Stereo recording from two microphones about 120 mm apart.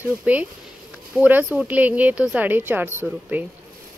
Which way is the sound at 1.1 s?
10° right (ahead or behind).